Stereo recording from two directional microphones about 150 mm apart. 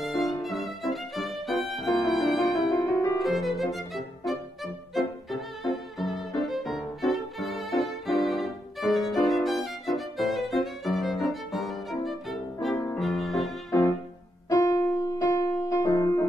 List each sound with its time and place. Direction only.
0.0 s music: centre (ahead or behind)
2.4 s music: 25° left (ahead or behind)
3.2 s violin: centre (ahead or behind)
12.9 s music: centre (ahead or behind)
13.7 s music: 20° left (ahead or behind)